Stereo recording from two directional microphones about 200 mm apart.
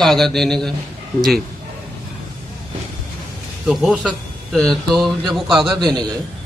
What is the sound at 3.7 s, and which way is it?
A man's voice, centre (ahead or behind).